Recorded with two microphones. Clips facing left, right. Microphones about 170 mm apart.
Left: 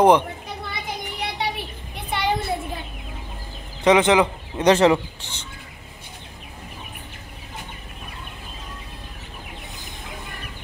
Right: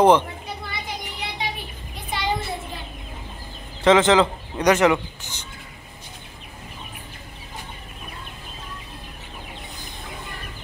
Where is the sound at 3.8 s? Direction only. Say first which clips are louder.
Even; 15° left (ahead or behind).